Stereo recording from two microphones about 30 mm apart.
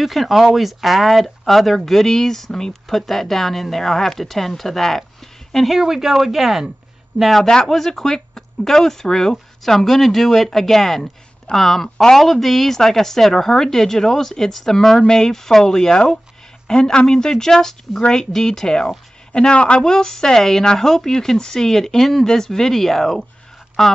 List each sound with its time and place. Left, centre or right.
0.0 s speech: centre
5.8 s speech: centre
7.6 s speech: centre
19.5 s speech: left
19.8 s speech: left